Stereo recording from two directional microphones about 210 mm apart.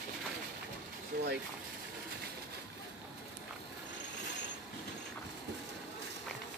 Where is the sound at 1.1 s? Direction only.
45° right (ahead or behind).